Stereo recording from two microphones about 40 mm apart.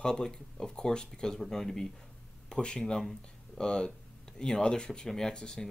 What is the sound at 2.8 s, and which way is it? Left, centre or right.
Speech, centre.